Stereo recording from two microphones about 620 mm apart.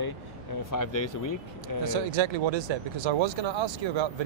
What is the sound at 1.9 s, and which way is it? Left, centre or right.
Speech, right.